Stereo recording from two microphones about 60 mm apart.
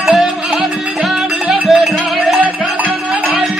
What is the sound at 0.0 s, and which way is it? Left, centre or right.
Music, centre.